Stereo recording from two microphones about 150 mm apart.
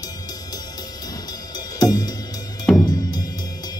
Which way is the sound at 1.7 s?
25° left (ahead or behind).